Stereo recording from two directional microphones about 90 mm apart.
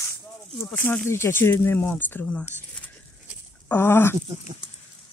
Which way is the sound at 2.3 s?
10° left (ahead or behind).